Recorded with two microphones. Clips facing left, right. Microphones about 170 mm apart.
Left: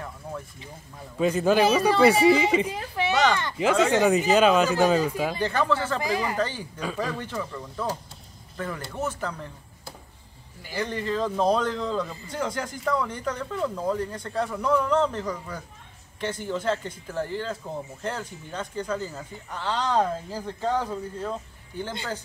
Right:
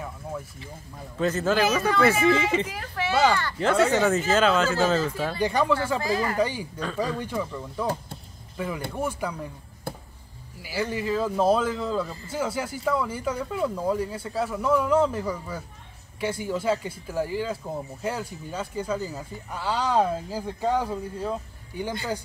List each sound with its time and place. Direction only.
0.3 s a sound: 5° right (ahead or behind)
1.1 s speech: 10° left (ahead or behind)
5.4 s speech: 15° right (ahead or behind)
5.9 s speech: 15° left (ahead or behind)
6.3 s speech: 10° right (ahead or behind)
9.9 s a sound: 55° right (ahead or behind)
10.6 s speech: 5° right (ahead or behind)